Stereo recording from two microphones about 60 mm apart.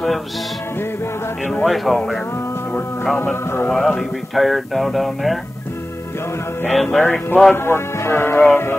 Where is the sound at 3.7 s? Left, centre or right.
Centre.